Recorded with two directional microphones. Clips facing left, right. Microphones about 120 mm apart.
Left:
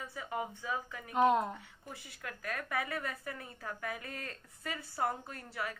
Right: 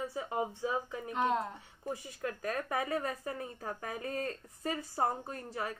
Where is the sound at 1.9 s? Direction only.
35° right (ahead or behind).